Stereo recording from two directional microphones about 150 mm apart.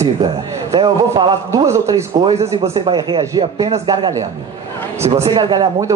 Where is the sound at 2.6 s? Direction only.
40° right (ahead or behind).